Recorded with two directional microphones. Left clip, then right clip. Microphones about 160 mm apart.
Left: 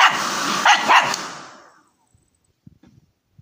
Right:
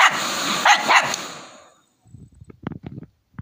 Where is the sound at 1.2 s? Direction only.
15° right (ahead or behind).